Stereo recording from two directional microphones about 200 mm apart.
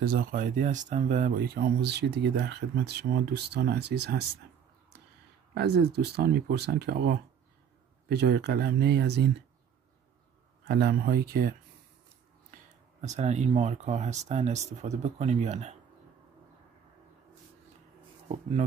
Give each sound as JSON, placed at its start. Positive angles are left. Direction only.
{"t": 0.0, "sound": "speech", "side_deg": -45}
{"t": 5.5, "sound": "speech", "side_deg": -55}
{"t": 10.7, "sound": "speech", "side_deg": -50}
{"t": 13.0, "sound": "speech", "side_deg": -35}